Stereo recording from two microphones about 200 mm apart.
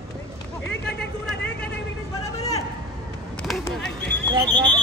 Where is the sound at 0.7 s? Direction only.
60° left (ahead or behind).